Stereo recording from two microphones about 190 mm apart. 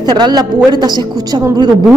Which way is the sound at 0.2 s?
20° right (ahead or behind).